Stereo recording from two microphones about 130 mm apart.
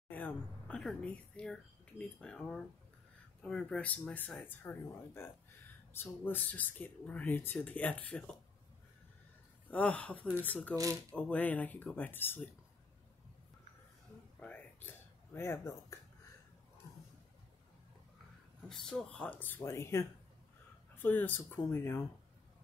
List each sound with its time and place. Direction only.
0.1 s speech: 10° left (ahead or behind)
9.7 s speech: 10° left (ahead or behind)
10.8 s speech: 25° right (ahead or behind)
11.1 s speech: 10° left (ahead or behind)
14.4 s a sound: 15° left (ahead or behind)
18.7 s speech: 5° left (ahead or behind)